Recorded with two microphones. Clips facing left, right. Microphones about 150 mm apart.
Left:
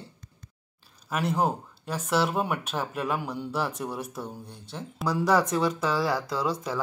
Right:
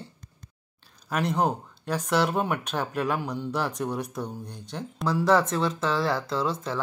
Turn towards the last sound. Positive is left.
turn(degrees=10)  # may be behind; listen again after turning